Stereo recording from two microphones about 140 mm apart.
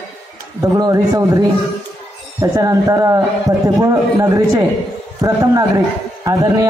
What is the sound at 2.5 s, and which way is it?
A man's voice, 25° right (ahead or behind).